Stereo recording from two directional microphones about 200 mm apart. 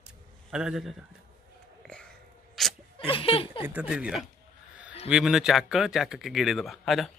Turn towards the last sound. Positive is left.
turn(degrees=0)  # may be behind; listen again after turning